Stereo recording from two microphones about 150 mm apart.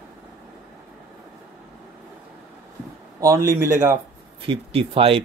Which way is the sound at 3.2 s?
20° right (ahead or behind).